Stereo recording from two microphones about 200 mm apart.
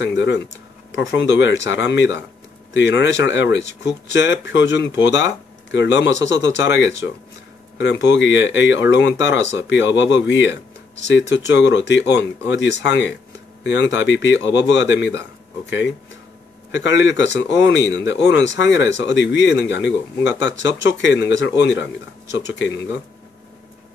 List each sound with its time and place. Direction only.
0.0 s speech: 60° left (ahead or behind)
16.7 s speech: 65° left (ahead or behind)